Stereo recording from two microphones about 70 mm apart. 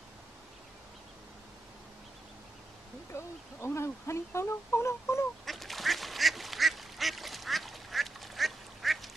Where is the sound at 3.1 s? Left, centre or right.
Left.